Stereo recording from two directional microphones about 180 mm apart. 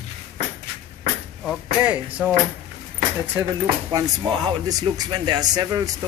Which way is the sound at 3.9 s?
25° right (ahead or behind).